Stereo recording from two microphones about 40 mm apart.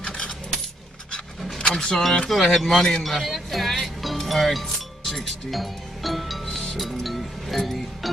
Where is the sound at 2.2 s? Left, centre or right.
Centre.